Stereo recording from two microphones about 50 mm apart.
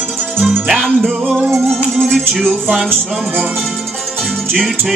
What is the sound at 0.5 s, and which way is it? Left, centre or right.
Music, right.